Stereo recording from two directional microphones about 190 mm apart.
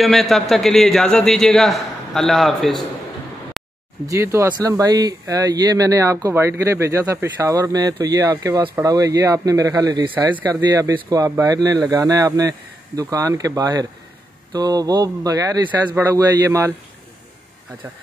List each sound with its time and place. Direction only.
0.0 s a man's voice: centre (ahead or behind)
4.1 s speech: 15° right (ahead or behind)